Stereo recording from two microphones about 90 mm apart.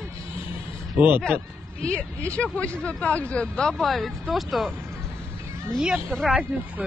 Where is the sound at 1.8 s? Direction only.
15° left (ahead or behind).